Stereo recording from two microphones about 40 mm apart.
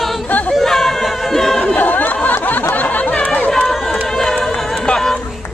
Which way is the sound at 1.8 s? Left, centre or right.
Left.